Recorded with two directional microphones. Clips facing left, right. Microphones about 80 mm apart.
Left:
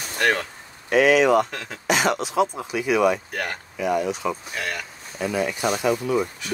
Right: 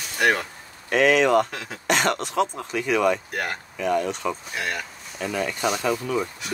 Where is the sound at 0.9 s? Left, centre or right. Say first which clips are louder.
Left 2 dB; centre.